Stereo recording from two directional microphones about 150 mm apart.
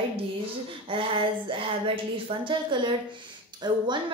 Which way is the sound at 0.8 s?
35° right (ahead or behind).